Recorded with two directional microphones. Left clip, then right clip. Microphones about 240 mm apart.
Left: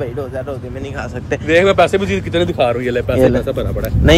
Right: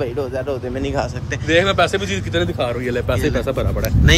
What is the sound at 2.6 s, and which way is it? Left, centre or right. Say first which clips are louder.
Speech: left 7 dB; centre.